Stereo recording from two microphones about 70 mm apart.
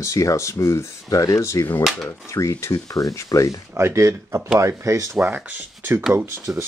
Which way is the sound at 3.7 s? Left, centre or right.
Right.